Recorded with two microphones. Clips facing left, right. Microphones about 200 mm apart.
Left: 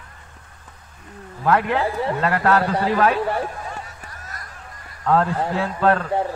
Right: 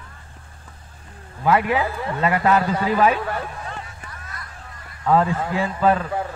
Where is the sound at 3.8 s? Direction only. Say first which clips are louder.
Even; 40° left (ahead or behind).